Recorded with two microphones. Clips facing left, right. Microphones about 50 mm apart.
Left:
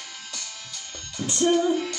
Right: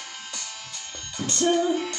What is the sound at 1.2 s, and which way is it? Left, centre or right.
Music, centre.